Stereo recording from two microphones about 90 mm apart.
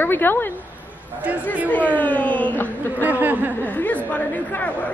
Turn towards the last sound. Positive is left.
turn(degrees=20)  # may be behind; listen again after turning